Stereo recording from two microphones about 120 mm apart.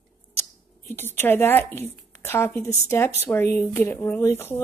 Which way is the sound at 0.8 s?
20° left (ahead or behind).